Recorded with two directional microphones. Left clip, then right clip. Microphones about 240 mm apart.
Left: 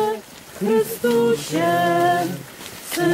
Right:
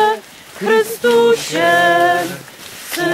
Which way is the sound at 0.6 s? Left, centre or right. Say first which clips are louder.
Right 6 dB; centre.